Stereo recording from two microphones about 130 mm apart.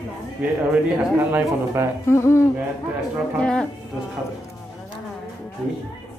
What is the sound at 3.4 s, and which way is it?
Speech, 5° left (ahead or behind).